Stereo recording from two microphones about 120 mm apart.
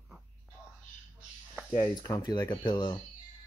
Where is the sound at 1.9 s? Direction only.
35° left (ahead or behind).